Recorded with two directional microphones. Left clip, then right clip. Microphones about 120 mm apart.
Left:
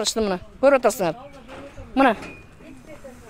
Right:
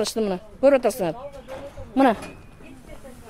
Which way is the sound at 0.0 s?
10° left (ahead or behind).